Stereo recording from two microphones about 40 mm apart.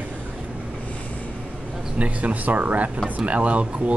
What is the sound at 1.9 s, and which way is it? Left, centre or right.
Speech, right.